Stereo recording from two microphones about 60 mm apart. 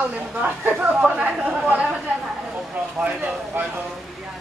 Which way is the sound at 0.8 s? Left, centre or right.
Centre.